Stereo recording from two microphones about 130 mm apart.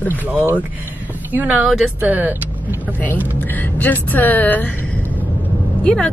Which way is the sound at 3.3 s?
15° left (ahead or behind).